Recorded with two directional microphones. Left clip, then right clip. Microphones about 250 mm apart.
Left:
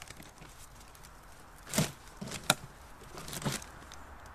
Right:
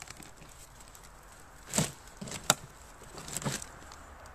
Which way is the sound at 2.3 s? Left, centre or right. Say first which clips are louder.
Right 1 dB; centre.